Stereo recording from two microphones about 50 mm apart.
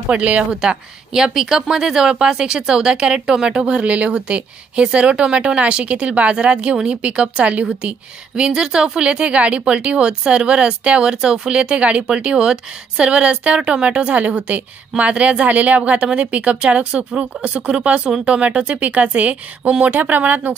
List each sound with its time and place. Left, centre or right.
0.1 s speech: right
0.5 s speech: centre
18.8 s speech: right